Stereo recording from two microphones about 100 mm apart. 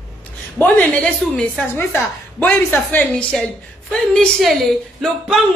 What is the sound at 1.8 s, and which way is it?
A woman's voice, 20° left (ahead or behind).